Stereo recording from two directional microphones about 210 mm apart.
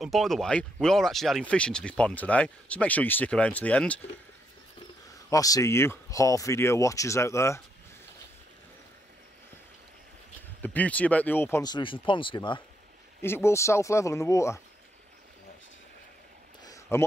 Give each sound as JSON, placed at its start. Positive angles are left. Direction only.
{"t": 0.0, "sound": "speech", "side_deg": 0}
{"t": 5.3, "sound": "speech", "side_deg": 15}
{"t": 10.6, "sound": "speech", "side_deg": 5}
{"t": 13.2, "sound": "speech", "side_deg": 10}
{"t": 16.6, "sound": "a sound", "side_deg": 15}